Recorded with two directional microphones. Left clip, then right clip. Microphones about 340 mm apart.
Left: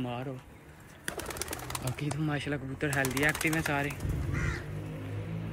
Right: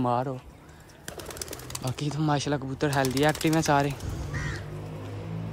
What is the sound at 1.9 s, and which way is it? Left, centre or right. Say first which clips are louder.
Speech: right 8 dB; centre.